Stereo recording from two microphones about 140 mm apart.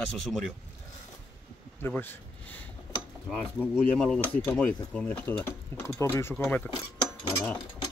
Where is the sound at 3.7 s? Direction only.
5° left (ahead or behind).